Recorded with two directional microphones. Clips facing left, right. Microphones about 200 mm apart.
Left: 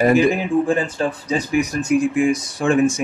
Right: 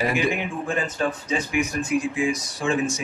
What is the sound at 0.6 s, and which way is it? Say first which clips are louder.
Speech: left 5 dB; 30° left (ahead or behind).